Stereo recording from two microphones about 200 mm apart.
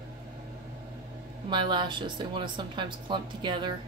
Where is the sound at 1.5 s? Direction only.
25° right (ahead or behind).